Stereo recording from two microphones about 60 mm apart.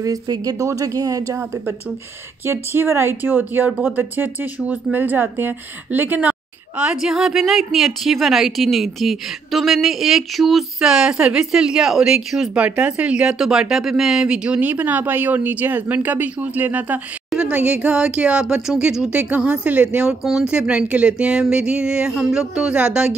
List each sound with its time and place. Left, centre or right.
0.0 s a woman's voice: right
2.4 s speech: right
6.8 s a woman's voice: centre
10.8 s speech: centre
12.5 s speech: right